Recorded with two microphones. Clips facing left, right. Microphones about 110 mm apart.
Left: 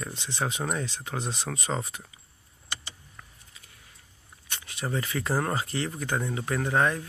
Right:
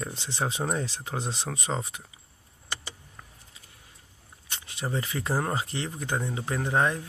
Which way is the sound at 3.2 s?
25° right (ahead or behind).